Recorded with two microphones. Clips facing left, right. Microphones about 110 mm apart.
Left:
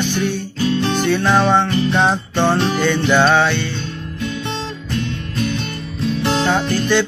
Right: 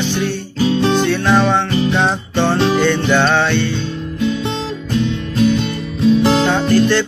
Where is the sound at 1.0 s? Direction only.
Centre (ahead or behind).